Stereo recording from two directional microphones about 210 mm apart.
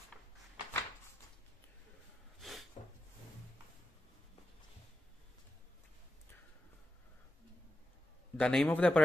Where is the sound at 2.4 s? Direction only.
Centre (ahead or behind).